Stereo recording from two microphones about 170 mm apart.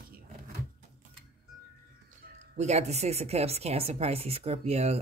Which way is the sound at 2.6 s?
40° right (ahead or behind).